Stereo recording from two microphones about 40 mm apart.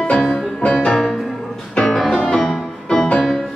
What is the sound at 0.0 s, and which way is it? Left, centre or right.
Music, left.